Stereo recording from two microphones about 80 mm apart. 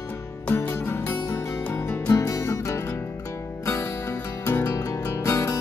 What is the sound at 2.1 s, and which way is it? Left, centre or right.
Music, left.